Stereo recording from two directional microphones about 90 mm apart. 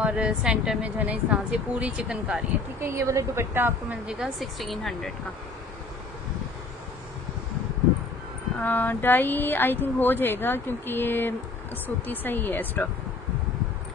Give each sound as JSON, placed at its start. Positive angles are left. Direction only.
{"t": 0.0, "sound": "speech", "side_deg": -10}
{"t": 2.8, "sound": "a woman's voice", "side_deg": -30}
{"t": 4.1, "sound": "speech", "side_deg": 0}
{"t": 8.5, "sound": "speech", "side_deg": 20}